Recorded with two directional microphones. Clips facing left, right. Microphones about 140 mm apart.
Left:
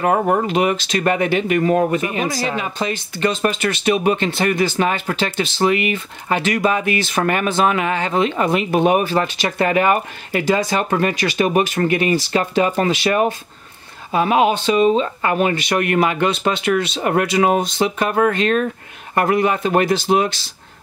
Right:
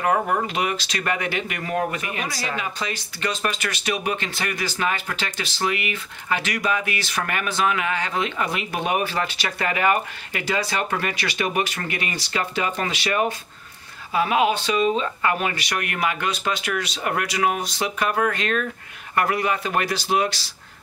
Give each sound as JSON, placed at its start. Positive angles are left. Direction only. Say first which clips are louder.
{"t": 0.0, "sound": "speech", "louder": "left 5 dB", "side_deg": 30}
{"t": 6.6, "sound": "speech", "louder": "left 7 dB", "side_deg": 40}
{"t": 9.6, "sound": "speech", "louder": "left 5 dB", "side_deg": 30}